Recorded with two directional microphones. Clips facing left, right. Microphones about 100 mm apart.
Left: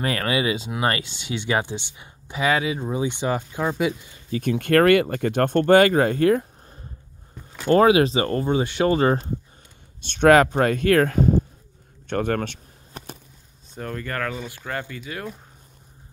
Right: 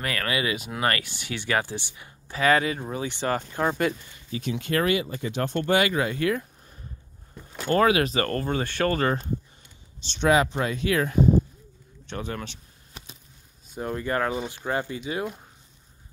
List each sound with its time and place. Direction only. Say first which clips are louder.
0.0 s speech: left 4 dB; 25° left (ahead or behind)
2.5 s speech: right 1 dB; 5° left (ahead or behind)
2.9 s speech: left 3 dB; 20° left (ahead or behind)
4.3 s speech: left 7 dB; 50° left (ahead or behind); by 9.1 s 20° left (ahead or behind)
9.9 s speech: left 6 dB; 55° left (ahead or behind)
12.1 s a sound: left 9 dB; 50° left (ahead or behind)
13.7 s speech: right 2 dB; 15° right (ahead or behind)